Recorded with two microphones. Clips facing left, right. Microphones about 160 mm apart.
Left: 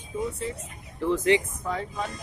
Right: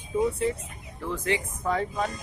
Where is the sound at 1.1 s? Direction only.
20° left (ahead or behind).